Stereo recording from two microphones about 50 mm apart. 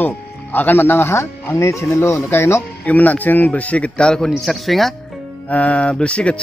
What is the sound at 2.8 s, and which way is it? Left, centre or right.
Speech, left.